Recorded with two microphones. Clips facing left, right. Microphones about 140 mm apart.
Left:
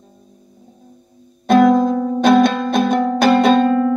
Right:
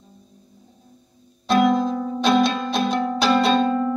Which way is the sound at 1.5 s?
50° left (ahead or behind).